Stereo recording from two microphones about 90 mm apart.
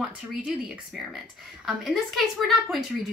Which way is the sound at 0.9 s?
Centre (ahead or behind).